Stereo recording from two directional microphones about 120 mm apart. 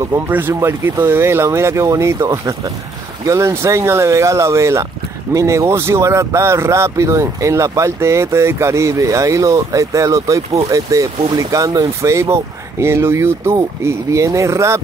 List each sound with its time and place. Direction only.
0.3 s speech: 15° right (ahead or behind)